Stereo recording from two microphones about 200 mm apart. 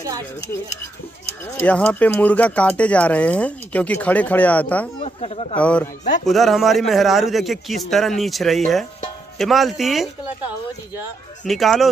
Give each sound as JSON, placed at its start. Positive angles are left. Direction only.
{"t": 1.6, "sound": "speech", "side_deg": 5}
{"t": 4.9, "sound": "speech", "side_deg": 30}
{"t": 5.6, "sound": "a man's voice", "side_deg": 5}
{"t": 11.4, "sound": "a man's voice", "side_deg": 0}